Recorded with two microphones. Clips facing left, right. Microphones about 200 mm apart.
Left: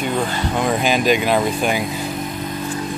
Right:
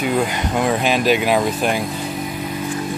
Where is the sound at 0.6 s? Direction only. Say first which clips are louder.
Right 1 dB; centre (ahead or behind).